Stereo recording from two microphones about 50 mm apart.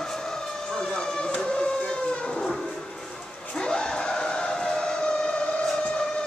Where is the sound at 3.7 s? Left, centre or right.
Centre.